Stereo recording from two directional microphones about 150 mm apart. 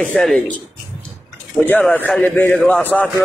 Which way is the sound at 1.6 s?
10° left (ahead or behind).